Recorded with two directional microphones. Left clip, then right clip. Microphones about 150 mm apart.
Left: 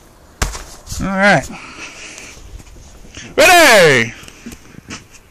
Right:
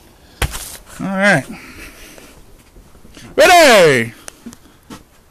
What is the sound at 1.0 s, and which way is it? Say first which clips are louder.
Speech: left 2 dB; 25° right (ahead or behind).